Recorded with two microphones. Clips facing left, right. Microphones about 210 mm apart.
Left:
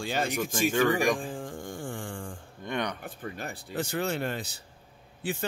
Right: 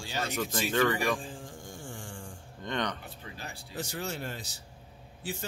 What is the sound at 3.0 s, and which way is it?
Speech, 50° left (ahead or behind).